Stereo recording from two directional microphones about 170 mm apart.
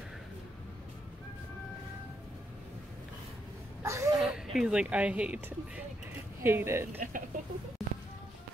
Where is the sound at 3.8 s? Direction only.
15° right (ahead or behind).